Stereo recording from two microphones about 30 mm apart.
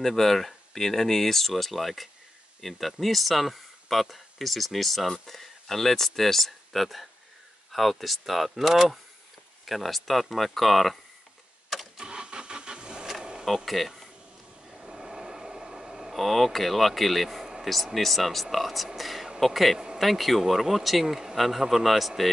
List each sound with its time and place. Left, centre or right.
0.0 s speech: centre
12.0 s vehicle: right
13.2 s a sound: right
13.7 s speech: centre
14.7 s a sound: centre
16.2 s speech: centre
17.4 s vehicle: centre
17.6 s speech: centre